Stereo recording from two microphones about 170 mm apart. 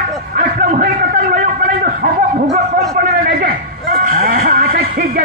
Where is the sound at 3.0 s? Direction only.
60° right (ahead or behind).